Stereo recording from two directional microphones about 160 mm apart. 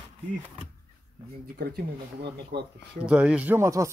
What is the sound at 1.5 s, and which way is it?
Speech, 70° right (ahead or behind).